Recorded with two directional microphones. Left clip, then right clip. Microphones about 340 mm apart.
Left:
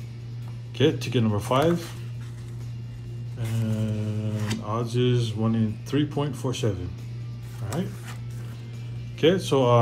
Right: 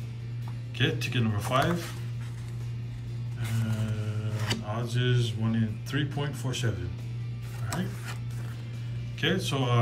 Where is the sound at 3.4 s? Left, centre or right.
Centre.